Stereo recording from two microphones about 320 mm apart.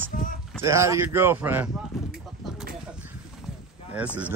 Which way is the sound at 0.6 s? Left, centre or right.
Centre.